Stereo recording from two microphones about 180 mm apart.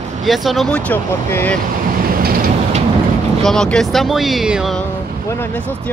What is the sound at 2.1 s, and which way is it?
Vehicle, 55° right (ahead or behind).